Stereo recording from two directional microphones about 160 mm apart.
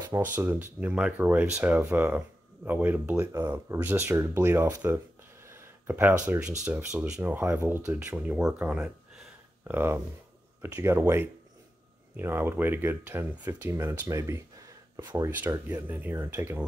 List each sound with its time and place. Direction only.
0.4 s speech: 15° right (ahead or behind)
15.7 s speech: 10° right (ahead or behind)